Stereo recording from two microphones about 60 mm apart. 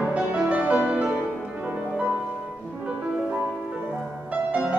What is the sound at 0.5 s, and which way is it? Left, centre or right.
Music, right.